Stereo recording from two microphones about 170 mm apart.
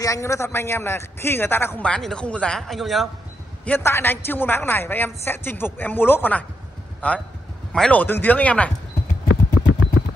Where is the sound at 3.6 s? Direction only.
10° left (ahead or behind).